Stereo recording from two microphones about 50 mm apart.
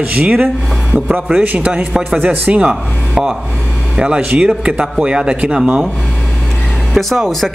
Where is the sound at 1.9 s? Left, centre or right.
Centre.